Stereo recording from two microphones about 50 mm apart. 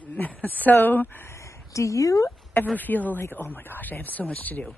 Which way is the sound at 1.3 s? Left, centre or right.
Left.